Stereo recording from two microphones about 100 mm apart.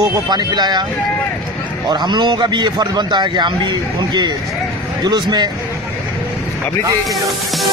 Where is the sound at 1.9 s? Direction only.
45° right (ahead or behind).